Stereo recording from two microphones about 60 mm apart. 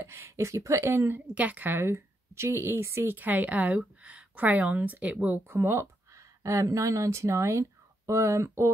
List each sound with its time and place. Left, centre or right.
0.0 s speech: right
0.8 s a woman's voice: right
1.2 s a woman's voice: right
1.8 s speech: right
3.2 s a woman's voice: right
5.5 s speech: right